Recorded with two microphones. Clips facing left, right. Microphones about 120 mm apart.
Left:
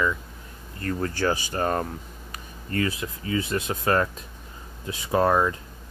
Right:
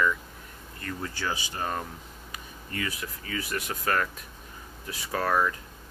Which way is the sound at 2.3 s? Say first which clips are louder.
Left 8 dB; 45° left (ahead or behind).